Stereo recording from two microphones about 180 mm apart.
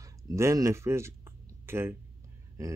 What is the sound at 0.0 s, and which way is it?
Speech, 15° right (ahead or behind).